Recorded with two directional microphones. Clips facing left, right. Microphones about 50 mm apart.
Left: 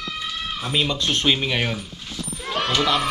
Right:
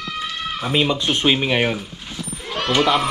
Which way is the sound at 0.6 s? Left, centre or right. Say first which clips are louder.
Right 4 dB; centre.